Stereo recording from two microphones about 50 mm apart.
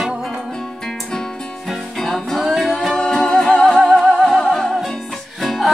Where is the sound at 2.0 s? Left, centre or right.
Centre.